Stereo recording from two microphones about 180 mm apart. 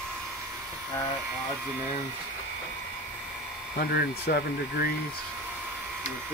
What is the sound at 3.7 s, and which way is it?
Speech, 60° left (ahead or behind).